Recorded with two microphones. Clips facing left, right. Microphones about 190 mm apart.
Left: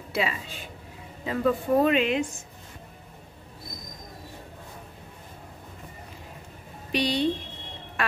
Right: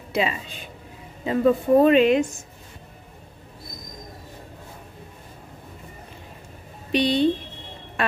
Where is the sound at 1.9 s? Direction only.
40° right (ahead or behind).